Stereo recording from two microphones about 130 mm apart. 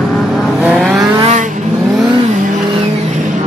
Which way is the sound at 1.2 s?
60° right (ahead or behind).